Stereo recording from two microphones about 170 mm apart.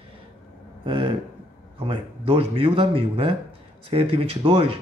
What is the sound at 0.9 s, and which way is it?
A man's voice, 35° right (ahead or behind).